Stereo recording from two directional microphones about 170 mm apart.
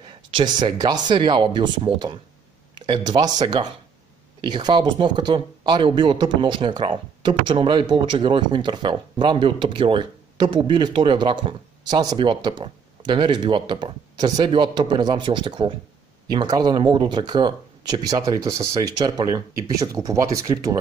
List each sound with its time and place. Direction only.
0.0 s speech: 30° right (ahead or behind)